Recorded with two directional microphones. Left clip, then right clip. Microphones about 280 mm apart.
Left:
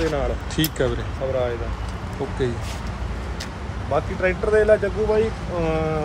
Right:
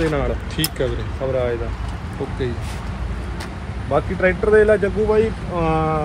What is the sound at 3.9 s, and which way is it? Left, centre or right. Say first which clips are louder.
Speech: right 4 dB; right.